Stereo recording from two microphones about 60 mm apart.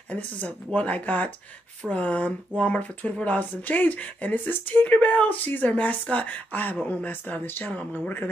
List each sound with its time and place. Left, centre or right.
0.7 s speech: left
4.8 s speech: left